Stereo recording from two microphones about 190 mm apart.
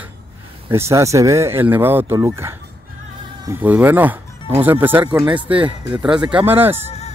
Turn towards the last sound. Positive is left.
turn(degrees=35)  # may be behind; listen again after turning